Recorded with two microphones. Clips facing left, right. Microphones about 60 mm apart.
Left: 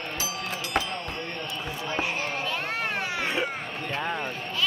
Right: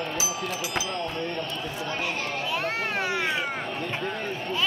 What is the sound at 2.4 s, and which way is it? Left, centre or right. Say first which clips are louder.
Children playing: right 1 dB; centre.